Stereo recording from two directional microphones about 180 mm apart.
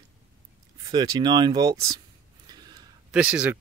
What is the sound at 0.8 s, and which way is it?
Speech, 20° right (ahead or behind).